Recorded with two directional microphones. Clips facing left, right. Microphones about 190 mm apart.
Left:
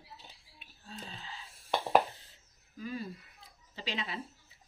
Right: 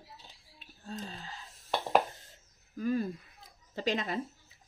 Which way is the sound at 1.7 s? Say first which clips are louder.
Left 1 dB; 5° left (ahead or behind).